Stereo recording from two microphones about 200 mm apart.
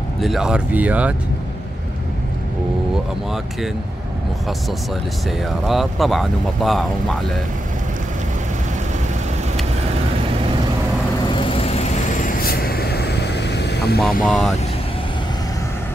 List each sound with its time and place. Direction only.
0.2 s speech: centre (ahead or behind)
5.4 s speech: centre (ahead or behind)
11.2 s vehicle: 25° left (ahead or behind); by 13.9 s 55° left (ahead or behind)
14.2 s speech: centre (ahead or behind)